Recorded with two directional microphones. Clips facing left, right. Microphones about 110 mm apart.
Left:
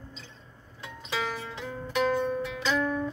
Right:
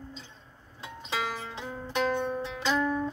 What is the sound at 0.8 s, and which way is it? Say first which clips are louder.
Music: even; 25° right (ahead or behind).